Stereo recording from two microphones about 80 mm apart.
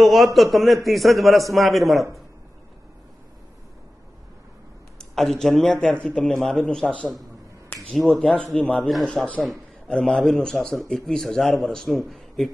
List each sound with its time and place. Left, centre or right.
0.0 s a man's voice: centre
4.9 s a sound: centre
5.6 s a man's voice: centre
7.7 s finger snapping: left
8.2 s a man's voice: centre
12.0 s a sound: centre